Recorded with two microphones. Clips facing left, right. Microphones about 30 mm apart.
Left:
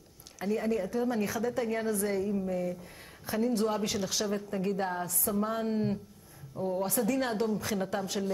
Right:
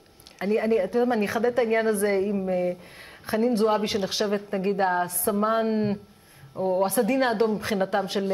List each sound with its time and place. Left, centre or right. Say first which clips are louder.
0.4 s a woman's voice: right 8 dB; right